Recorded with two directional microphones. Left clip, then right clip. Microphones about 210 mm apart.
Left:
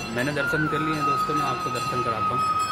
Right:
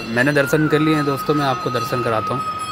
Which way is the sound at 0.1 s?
30° right (ahead or behind).